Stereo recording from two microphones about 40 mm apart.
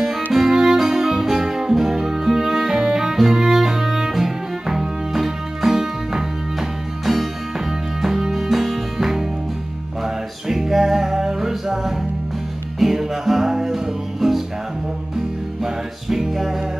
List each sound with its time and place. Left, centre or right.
0.0 s music: centre
8.0 s music: centre
15.6 s music: centre